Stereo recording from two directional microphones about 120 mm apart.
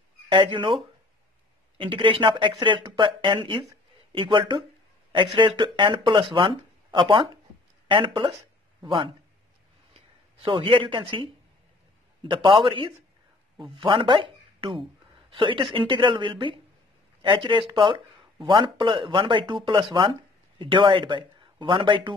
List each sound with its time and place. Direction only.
0.3 s speech: 45° right (ahead or behind)
12.3 s speech: 40° right (ahead or behind)